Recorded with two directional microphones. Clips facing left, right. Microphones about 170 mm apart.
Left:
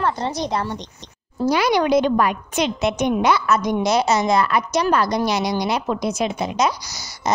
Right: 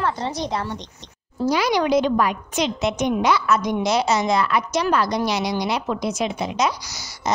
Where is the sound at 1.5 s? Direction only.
55° left (ahead or behind).